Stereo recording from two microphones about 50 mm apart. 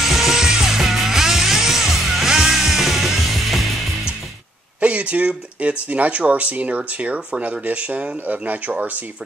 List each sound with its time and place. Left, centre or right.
0.0 s music: centre
4.7 s speech: right